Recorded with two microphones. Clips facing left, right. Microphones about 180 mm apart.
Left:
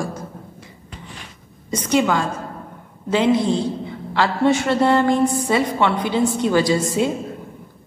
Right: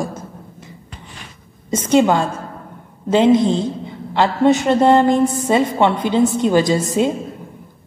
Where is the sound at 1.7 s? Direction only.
25° right (ahead or behind).